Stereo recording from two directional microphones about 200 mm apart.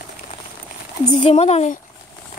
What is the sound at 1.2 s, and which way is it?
Speech, 30° left (ahead or behind).